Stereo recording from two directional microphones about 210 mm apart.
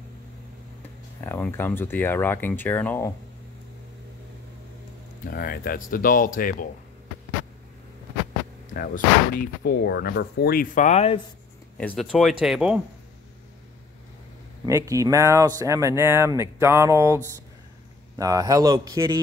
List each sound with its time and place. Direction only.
1.2 s speech: 10° left (ahead or behind)
5.3 s speech: 45° left (ahead or behind)
8.7 s speech: 45° left (ahead or behind)
11.8 s speech: 5° left (ahead or behind)
14.7 s speech: 15° right (ahead or behind)